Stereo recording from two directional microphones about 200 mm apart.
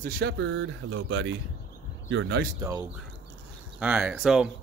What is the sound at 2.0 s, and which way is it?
Speech, 65° right (ahead or behind).